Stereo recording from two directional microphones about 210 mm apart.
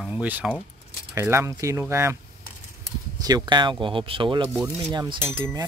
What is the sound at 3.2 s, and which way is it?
Speech, 20° right (ahead or behind).